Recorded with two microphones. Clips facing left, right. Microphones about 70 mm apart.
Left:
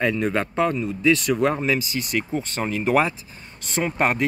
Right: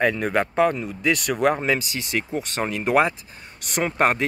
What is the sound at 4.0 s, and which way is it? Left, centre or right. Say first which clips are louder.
Speech: right 2 dB; right.